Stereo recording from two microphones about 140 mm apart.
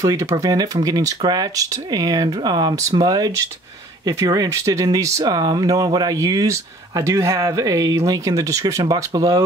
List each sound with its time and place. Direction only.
0.0 s speech: 25° right (ahead or behind)